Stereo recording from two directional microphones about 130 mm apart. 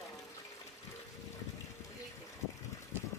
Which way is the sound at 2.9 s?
15° right (ahead or behind).